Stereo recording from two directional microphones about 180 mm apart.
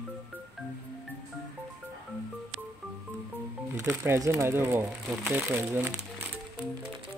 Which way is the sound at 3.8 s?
15° right (ahead or behind).